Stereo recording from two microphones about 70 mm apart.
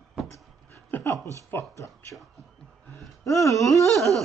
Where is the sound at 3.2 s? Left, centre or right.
Left.